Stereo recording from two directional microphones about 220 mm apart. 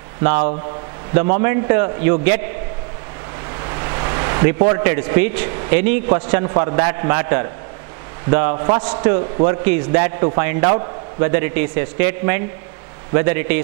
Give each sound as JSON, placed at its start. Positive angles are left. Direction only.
{"t": 0.2, "sound": "a man's voice", "side_deg": -10}